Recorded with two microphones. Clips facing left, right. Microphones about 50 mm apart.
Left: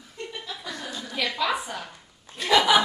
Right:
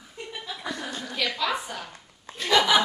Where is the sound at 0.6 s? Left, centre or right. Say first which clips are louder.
Right 2 dB; right.